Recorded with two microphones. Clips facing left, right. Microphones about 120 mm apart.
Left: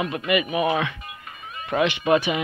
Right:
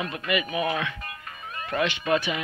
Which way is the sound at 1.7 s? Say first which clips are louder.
Left 5 dB; 15° left (ahead or behind).